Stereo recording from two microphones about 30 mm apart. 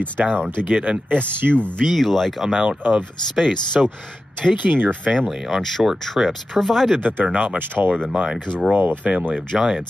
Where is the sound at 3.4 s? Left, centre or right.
Centre.